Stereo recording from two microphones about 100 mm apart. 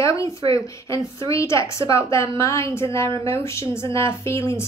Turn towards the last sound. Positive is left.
turn(degrees=30)  # may be behind; listen again after turning